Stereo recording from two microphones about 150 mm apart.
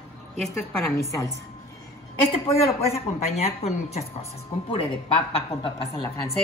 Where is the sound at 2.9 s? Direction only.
45° left (ahead or behind).